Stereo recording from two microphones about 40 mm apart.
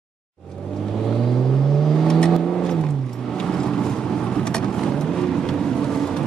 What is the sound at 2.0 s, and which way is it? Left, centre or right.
Vehicle, centre.